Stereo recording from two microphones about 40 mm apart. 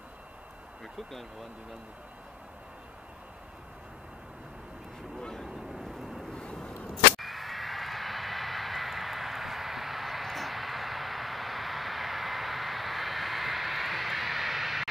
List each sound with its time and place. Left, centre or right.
6.3 s vehicle: left
6.9 s vehicle: centre